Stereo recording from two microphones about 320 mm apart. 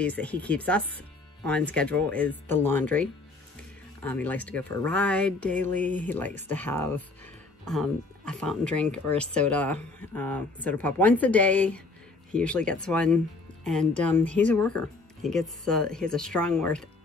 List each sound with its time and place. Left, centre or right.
0.0 s speech: centre
8.3 s speech: centre